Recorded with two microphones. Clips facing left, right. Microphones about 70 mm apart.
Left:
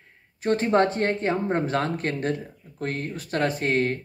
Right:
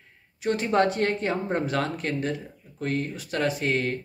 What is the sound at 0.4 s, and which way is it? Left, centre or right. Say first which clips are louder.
Speech: left 2 dB; left.